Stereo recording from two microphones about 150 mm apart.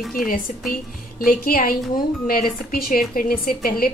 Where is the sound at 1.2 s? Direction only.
75° left (ahead or behind).